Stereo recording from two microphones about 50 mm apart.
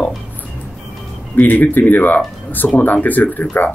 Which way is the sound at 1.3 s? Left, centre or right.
Left.